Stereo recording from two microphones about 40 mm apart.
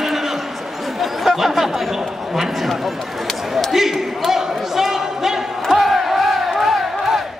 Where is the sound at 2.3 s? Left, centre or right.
Centre.